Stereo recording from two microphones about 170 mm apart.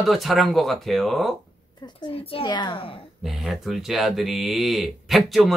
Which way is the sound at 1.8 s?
25° left (ahead or behind).